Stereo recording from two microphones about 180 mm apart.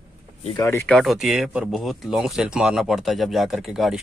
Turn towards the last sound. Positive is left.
turn(degrees=0)  # may be behind; listen again after turning